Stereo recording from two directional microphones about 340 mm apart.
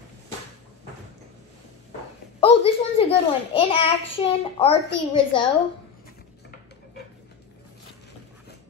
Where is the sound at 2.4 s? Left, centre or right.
Centre.